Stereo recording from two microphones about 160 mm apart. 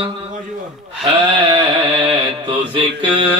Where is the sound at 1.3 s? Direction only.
30° right (ahead or behind).